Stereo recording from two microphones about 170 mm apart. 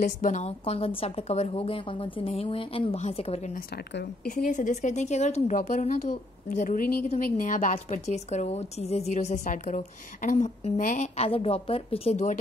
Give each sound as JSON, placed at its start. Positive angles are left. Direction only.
{"t": 0.0, "sound": "a woman's voice", "side_deg": 45}
{"t": 3.7, "sound": "a woman's voice", "side_deg": 70}